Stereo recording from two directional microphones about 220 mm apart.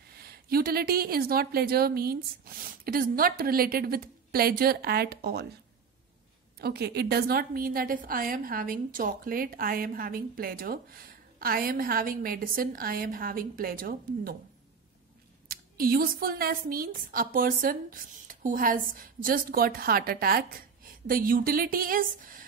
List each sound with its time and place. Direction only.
0.5 s a woman's voice: 45° right (ahead or behind)
6.6 s a woman's voice: 45° right (ahead or behind)
15.4 s a woman's voice: 40° right (ahead or behind)